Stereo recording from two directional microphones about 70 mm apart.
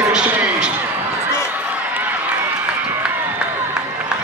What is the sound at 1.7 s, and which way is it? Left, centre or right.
Run, right.